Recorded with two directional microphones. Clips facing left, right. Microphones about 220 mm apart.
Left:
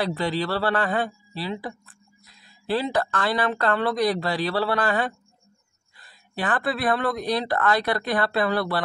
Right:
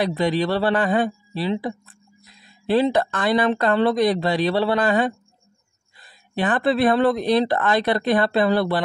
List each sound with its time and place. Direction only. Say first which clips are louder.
0.0 s speech: right 5 dB; 20° right (ahead or behind)